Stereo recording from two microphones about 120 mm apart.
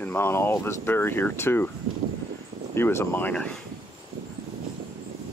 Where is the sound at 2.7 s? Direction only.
20° left (ahead or behind).